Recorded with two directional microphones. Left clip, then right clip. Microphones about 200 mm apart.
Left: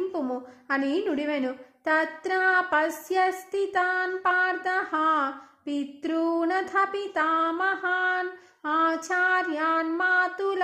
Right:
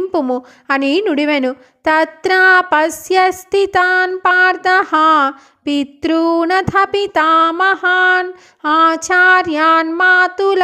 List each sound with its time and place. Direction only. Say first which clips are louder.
0.1 s a woman's voice: right 14 dB; 40° right (ahead or behind)